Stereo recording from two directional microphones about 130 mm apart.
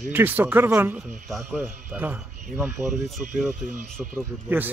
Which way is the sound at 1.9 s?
15° right (ahead or behind).